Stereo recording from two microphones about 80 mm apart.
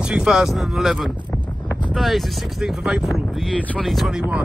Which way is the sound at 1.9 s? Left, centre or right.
Centre.